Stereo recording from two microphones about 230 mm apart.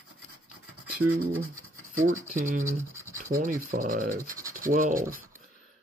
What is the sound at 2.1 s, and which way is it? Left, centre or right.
Speech, right.